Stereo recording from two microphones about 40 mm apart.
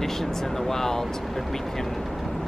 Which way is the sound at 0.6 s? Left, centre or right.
Centre.